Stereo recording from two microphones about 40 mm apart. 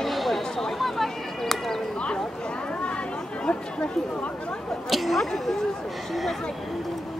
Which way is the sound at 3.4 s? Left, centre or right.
Left.